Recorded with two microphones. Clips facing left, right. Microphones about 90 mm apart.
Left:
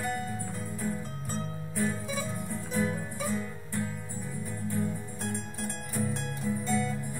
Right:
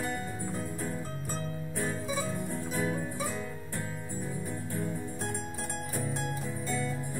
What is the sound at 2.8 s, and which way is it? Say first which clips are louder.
Music: left 2 dB; 40° right (ahead or behind).